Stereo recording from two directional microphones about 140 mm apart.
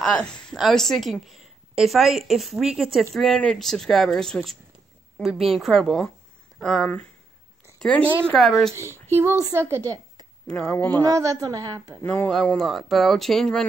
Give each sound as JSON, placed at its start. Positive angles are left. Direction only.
{"t": 0.0, "sound": "a woman's voice", "side_deg": 5}
{"t": 9.1, "sound": "a woman's voice", "side_deg": -20}
{"t": 10.4, "sound": "speech", "side_deg": 5}
{"t": 11.1, "sound": "a woman's voice", "side_deg": -25}
{"t": 12.0, "sound": "speech", "side_deg": 15}
{"t": 12.3, "sound": "a woman's voice", "side_deg": 0}